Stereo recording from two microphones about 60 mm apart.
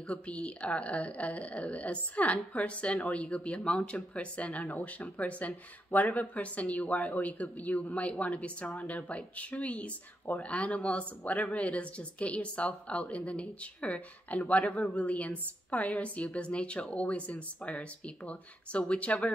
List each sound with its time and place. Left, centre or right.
0.1 s speech: left
14.7 s a man's voice: centre
15.0 s speech: left